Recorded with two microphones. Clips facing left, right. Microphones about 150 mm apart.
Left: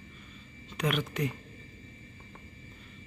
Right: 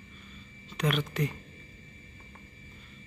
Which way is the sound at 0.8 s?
10° left (ahead or behind).